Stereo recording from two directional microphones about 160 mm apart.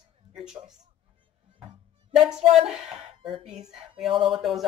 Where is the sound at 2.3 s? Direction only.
5° right (ahead or behind).